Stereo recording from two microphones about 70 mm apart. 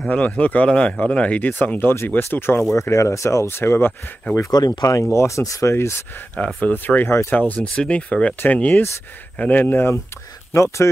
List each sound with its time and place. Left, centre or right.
0.1 s speech: left
2.7 s speech: left
4.5 s speech: left
5.1 s speech: left
6.3 s speech: centre
10.5 s speech: left